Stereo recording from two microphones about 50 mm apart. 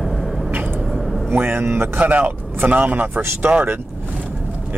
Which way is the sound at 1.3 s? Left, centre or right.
Right.